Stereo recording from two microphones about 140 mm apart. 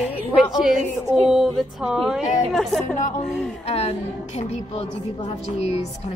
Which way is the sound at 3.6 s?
45° left (ahead or behind).